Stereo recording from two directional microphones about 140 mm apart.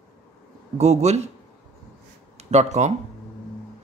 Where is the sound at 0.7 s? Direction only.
50° right (ahead or behind).